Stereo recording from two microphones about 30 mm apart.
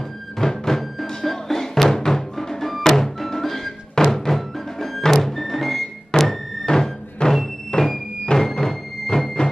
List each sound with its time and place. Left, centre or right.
0.4 s music: centre
7.2 s music: left
8.6 s music: centre